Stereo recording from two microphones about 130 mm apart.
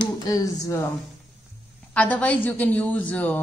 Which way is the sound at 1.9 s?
10° left (ahead or behind).